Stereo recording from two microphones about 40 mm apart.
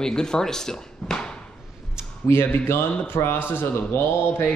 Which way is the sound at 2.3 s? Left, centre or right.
Left.